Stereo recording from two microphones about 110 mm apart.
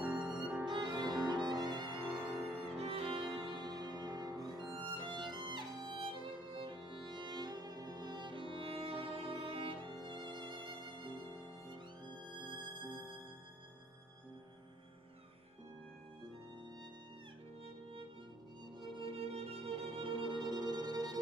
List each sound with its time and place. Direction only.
0.0 s violin: 10° right (ahead or behind)
0.7 s violin: 45° right (ahead or behind)
2.1 s violin: 5° right (ahead or behind)
2.8 s music: 55° right (ahead or behind); by 4.6 s 40° right (ahead or behind)
4.8 s violin: 50° right (ahead or behind)
7.1 s music: 45° right (ahead or behind)
18.9 s music: 55° right (ahead or behind); by 21.2 s 35° right (ahead or behind)